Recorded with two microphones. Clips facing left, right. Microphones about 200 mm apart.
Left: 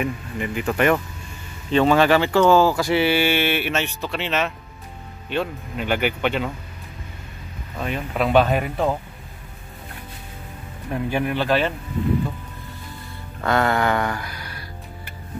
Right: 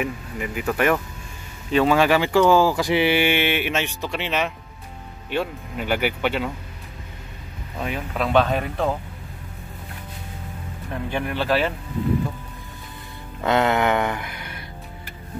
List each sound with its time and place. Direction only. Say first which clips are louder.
0.0 s speech: left 2 dB; 5° right (ahead or behind)
7.7 s speech: left 1 dB; 5° right (ahead or behind)
8.1 s speech: left 2 dB; 5° left (ahead or behind)
10.9 s speech: left 4 dB; 5° left (ahead or behind)
13.4 s speech: right 1 dB; 20° right (ahead or behind)